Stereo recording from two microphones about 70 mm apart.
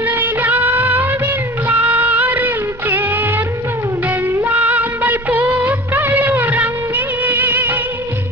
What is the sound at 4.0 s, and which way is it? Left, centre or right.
Music, right.